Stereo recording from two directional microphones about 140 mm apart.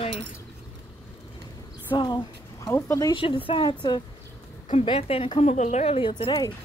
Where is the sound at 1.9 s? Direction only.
35° left (ahead or behind).